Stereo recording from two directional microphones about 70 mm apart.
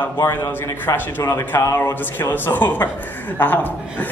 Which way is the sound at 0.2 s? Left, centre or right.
Left.